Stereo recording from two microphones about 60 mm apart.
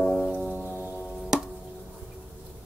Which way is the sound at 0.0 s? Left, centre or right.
Centre.